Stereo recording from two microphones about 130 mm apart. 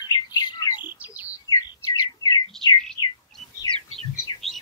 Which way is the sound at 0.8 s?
15° right (ahead or behind).